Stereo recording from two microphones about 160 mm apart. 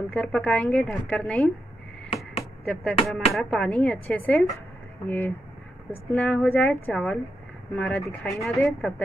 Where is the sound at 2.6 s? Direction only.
5° left (ahead or behind).